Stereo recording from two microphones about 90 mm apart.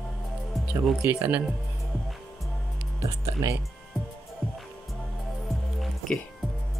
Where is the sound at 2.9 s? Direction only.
35° right (ahead or behind).